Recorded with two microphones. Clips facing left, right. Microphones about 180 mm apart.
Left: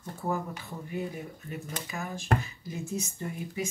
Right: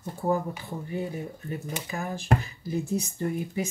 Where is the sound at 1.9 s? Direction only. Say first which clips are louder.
Right 3 dB; 35° right (ahead or behind).